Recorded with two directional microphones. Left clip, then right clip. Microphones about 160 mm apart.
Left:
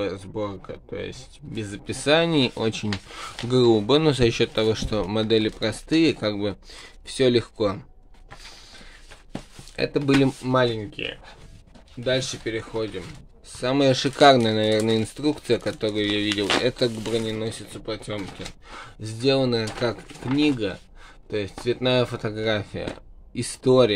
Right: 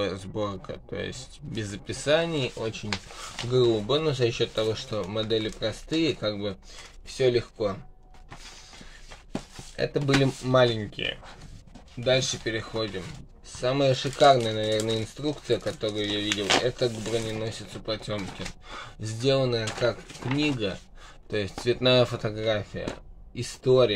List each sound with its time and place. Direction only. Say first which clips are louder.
0.0 s speech: left 1 dB; 10° left (ahead or behind)
1.9 s speech: left 4 dB; 30° left (ahead or behind); by 2.9 s 50° left (ahead or behind)
3.4 s speech: left 4 dB; 40° left (ahead or behind)
7.2 s speech: left 4 dB; 50° left (ahead or behind)
9.8 s speech: left 4 dB; 30° left (ahead or behind)
10.2 s speech: left 1 dB; 15° left (ahead or behind)
13.6 s speech: left 3 dB; 30° left (ahead or behind)
21.3 s speech: left 1 dB; 15° left (ahead or behind); by 23.9 s 35° left (ahead or behind)